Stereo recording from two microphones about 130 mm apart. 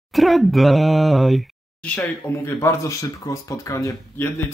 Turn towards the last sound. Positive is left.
turn(degrees=20)  # may be behind; listen again after turning